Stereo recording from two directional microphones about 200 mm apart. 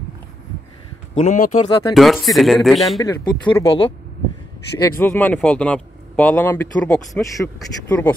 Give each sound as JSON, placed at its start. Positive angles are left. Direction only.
{"t": 1.1, "sound": "speech", "side_deg": 35}
{"t": 2.0, "sound": "speech", "side_deg": 0}
{"t": 3.0, "sound": "a man's voice", "side_deg": 20}